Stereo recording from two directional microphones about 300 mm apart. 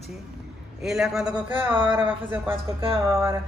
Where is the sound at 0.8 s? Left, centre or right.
Centre.